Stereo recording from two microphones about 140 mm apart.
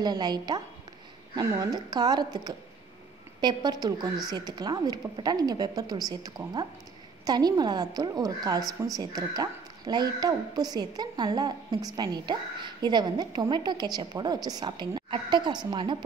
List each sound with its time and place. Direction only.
0.0 s a woman's voice: 30° right (ahead or behind)